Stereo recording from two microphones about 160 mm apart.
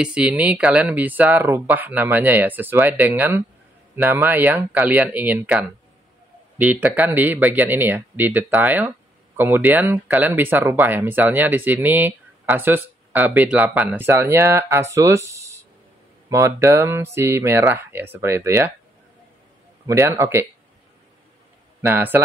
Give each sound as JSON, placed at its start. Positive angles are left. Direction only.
{"t": 0.0, "sound": "speech", "side_deg": -5}
{"t": 19.9, "sound": "speech", "side_deg": -15}
{"t": 21.8, "sound": "speech", "side_deg": -10}